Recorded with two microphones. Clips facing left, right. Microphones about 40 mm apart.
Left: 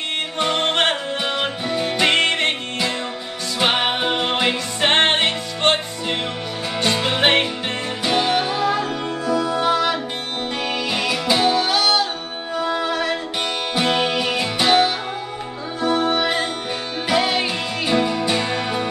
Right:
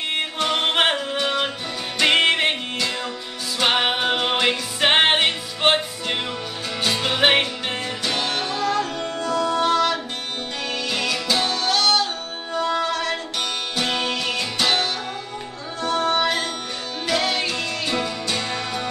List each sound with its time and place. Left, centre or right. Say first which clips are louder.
0.4 s music: left 1 dB; centre
1.1 s music: even; centre
2.0 s music: right 2 dB; centre
3.5 s music: left 1 dB; centre
6.8 s music: left 1 dB; centre